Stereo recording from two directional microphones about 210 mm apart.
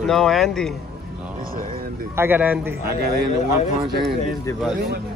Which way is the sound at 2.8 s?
45° right (ahead or behind).